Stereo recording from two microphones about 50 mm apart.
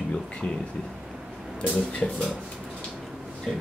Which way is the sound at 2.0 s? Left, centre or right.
Left.